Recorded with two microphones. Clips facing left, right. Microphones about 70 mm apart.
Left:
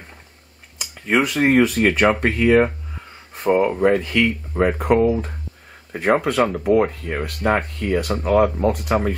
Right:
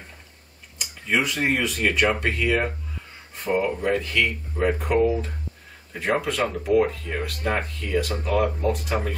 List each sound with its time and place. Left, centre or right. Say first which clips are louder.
0.7 s speech: left 5 dB; left